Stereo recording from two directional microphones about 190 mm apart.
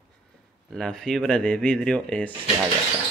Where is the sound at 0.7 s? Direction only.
5° left (ahead or behind).